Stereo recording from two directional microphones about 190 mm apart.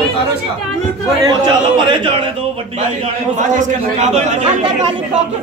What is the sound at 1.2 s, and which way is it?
Speech, 20° right (ahead or behind).